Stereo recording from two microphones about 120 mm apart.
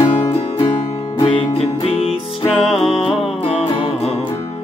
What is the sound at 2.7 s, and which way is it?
Music, centre (ahead or behind).